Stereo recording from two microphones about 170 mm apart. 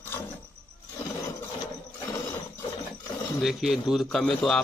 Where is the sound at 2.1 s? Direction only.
20° left (ahead or behind).